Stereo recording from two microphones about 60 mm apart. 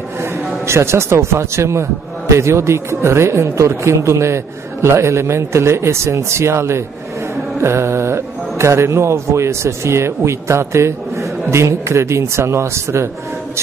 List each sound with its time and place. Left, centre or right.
0.2 s speech: right